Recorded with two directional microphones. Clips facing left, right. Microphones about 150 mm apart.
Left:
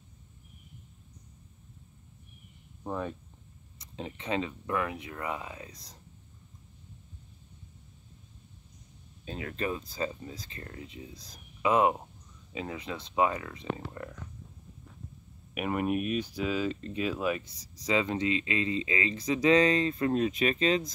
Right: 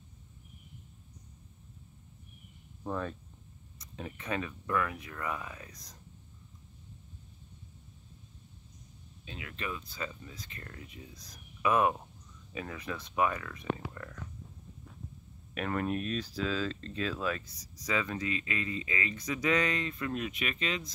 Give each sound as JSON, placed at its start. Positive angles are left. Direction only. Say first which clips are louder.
{"t": 2.8, "sound": "speech", "louder": "left 1 dB", "side_deg": 15}
{"t": 9.2, "sound": "speech", "louder": "left 7 dB", "side_deg": 40}
{"t": 15.5, "sound": "speech", "louder": "left 3 dB", "side_deg": 15}
{"t": 17.6, "sound": "speech", "louder": "left 5 dB", "side_deg": 25}